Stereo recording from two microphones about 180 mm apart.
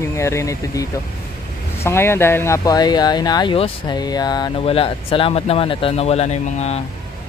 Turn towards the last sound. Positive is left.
turn(degrees=40)  # may be behind; listen again after turning